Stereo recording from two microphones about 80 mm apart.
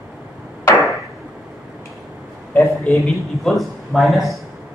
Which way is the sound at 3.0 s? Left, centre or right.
Centre.